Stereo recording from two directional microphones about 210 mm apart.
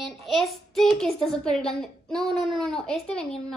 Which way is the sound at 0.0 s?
Centre (ahead or behind).